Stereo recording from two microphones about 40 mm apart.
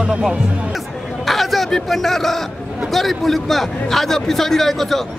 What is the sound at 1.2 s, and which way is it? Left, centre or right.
A man's voice, centre.